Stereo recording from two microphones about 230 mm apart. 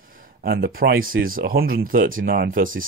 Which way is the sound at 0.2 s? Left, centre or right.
Right.